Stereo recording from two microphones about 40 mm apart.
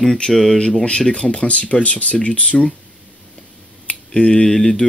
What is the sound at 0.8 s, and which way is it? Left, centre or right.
Speech, left.